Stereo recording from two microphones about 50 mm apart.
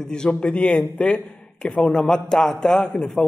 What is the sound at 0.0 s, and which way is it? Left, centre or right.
A man's voice, centre.